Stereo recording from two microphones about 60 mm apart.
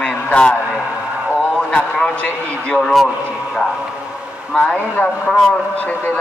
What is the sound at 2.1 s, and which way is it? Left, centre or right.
Speech, left.